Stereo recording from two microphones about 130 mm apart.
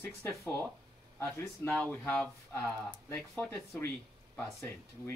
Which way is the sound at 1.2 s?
20° left (ahead or behind).